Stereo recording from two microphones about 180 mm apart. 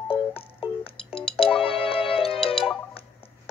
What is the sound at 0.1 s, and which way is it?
Music, 30° left (ahead or behind).